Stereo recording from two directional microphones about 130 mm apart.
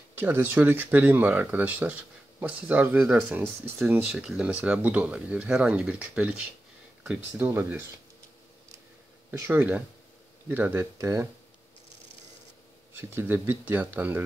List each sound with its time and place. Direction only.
0.2 s speech: 15° right (ahead or behind)
4.1 s speech: 5° right (ahead or behind)
9.3 s speech: 15° right (ahead or behind)
12.9 s speech: 15° right (ahead or behind)